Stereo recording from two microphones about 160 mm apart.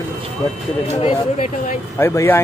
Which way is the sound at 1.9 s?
15° left (ahead or behind).